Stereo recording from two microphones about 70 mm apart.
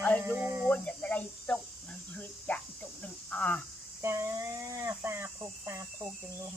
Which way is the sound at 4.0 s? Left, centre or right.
Right.